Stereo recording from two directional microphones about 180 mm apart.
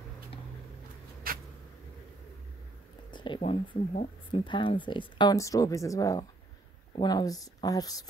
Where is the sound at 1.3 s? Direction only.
55° right (ahead or behind).